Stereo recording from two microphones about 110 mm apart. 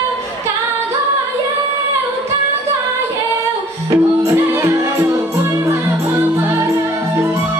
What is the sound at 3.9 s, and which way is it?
Music, 25° right (ahead or behind).